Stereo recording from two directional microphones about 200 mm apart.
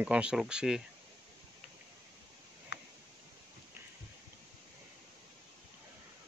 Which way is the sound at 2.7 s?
65° left (ahead or behind).